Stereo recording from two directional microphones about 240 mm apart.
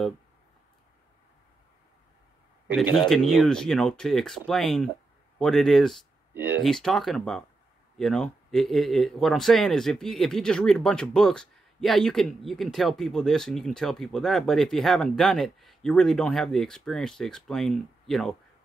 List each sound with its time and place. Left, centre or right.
3.0 s speech: centre